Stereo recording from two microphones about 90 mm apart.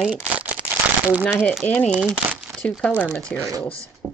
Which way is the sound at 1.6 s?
15° left (ahead or behind).